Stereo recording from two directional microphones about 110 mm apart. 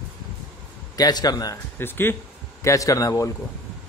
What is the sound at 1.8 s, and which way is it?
Speech, 20° left (ahead or behind).